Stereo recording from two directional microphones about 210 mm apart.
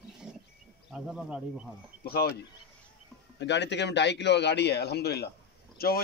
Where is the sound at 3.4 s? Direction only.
55° left (ahead or behind).